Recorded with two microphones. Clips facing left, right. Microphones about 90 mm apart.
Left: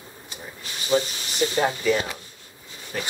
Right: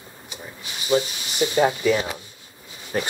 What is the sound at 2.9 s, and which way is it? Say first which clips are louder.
Speech: right 6 dB; 30° right (ahead or behind).